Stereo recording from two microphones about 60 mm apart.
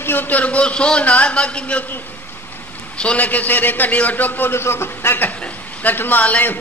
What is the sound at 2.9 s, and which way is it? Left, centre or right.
A man's voice, centre.